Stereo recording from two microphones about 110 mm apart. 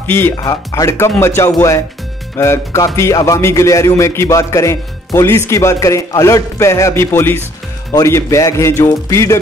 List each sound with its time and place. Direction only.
0.0 s speech: 20° left (ahead or behind)
0.4 s speech: 35° left (ahead or behind)